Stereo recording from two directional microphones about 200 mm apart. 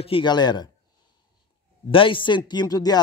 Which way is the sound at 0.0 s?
25° left (ahead or behind).